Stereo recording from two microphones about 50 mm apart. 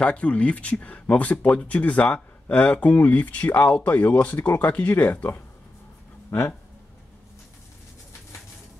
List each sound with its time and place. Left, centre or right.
0.0 s speech: left
6.3 s speech: left